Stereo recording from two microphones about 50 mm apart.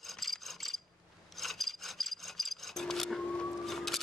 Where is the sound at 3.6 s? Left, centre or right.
Centre.